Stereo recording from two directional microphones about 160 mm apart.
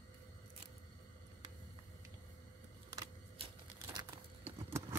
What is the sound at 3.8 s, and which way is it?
Crumpling, 25° right (ahead or behind).